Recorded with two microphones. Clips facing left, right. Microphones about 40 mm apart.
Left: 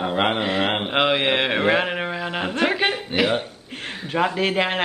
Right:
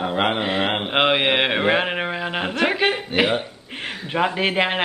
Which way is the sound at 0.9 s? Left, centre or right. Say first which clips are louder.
Right 2 dB; right.